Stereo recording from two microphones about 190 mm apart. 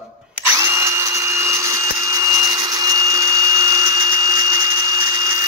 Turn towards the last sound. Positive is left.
turn(degrees=-20)  # may be behind; listen again after turning